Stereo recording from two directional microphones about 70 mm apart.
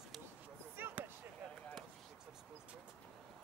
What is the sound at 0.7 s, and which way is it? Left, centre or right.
Basketball bounce, right.